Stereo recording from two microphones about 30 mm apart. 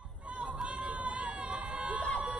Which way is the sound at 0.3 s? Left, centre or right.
Right.